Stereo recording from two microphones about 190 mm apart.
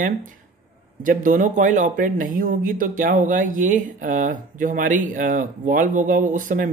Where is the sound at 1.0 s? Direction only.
45° right (ahead or behind).